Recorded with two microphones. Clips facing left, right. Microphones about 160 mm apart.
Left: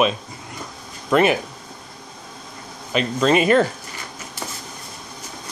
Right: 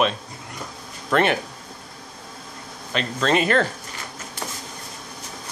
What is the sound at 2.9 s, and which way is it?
Speech, 10° left (ahead or behind).